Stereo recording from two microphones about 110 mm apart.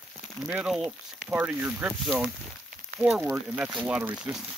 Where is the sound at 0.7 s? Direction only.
5° right (ahead or behind).